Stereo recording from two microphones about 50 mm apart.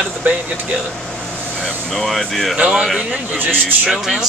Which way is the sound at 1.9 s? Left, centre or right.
Centre.